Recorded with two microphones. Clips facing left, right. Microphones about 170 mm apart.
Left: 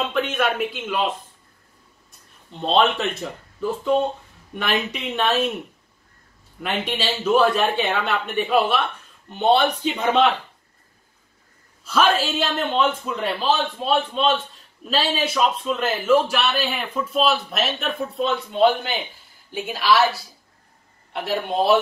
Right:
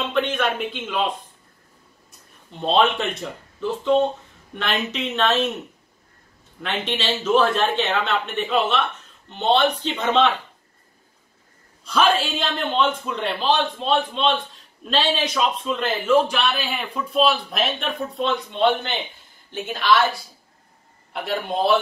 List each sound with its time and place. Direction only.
0.1 s speech: 5° left (ahead or behind)
2.6 s a man's voice: centre (ahead or behind)
6.6 s speech: 10° left (ahead or behind)
11.8 s a man's voice: 5° left (ahead or behind)
21.1 s a man's voice: centre (ahead or behind)